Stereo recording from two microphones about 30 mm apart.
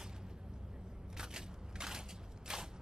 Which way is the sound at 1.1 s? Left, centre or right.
Right.